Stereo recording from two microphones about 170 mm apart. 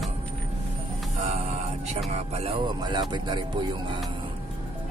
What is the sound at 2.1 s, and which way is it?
Speech, 35° right (ahead or behind).